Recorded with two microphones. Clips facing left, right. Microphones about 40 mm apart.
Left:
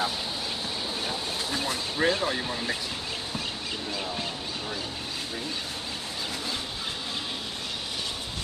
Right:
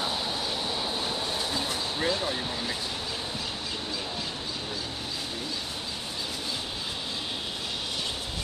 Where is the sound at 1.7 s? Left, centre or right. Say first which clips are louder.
Left 6 dB; left.